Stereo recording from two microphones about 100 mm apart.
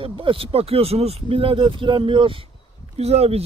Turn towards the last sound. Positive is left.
turn(degrees=-90)